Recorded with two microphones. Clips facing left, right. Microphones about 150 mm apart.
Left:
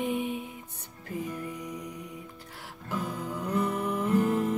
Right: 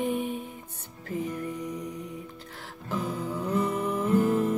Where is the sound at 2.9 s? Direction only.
Centre (ahead or behind).